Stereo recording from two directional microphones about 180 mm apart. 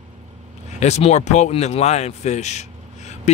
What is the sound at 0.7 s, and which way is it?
Speech, 40° left (ahead or behind).